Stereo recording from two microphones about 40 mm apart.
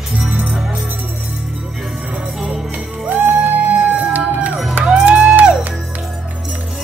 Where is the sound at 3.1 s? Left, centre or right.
Right.